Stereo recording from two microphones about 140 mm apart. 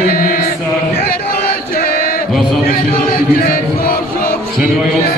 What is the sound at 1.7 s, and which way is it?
Chant, 90° left.